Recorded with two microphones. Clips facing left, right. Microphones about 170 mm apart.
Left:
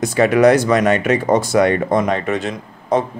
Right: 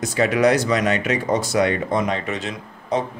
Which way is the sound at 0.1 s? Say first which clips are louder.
Left 5 dB; 55° left (ahead or behind).